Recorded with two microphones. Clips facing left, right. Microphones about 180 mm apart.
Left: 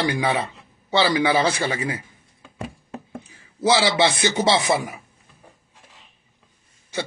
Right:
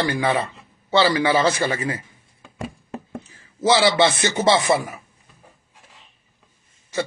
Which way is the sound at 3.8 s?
15° left (ahead or behind).